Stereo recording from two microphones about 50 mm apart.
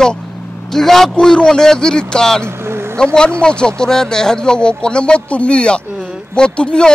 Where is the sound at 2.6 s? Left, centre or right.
Right.